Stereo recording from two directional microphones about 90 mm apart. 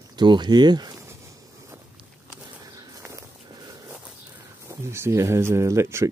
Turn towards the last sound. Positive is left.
turn(degrees=-35)  # may be behind; listen again after turning